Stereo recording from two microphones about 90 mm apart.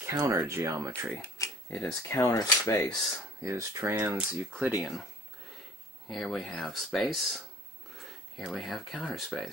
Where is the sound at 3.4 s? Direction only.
30° right (ahead or behind).